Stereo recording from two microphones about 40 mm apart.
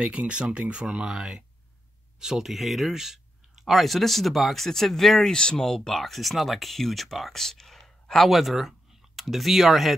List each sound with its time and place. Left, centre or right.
0.0 s speech: right; by 3.8 s centre
3.8 s speech: centre
5.3 s speech: left; by 7.4 s centre
7.4 s a sound: centre
8.3 s speech: centre